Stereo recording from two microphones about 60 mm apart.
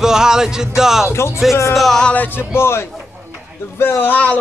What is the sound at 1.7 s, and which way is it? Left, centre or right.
Music, centre.